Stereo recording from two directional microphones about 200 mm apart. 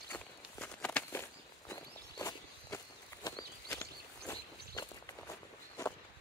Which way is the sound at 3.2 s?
15° left (ahead or behind).